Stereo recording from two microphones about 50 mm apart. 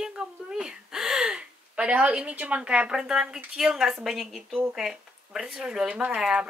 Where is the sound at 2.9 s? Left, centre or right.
Centre.